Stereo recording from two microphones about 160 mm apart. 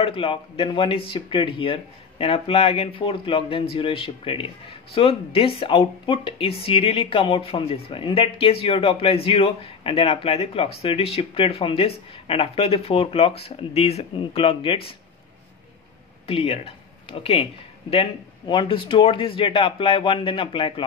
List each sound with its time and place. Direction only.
0.0 s speech: 35° left (ahead or behind)
16.3 s speech: 35° left (ahead or behind)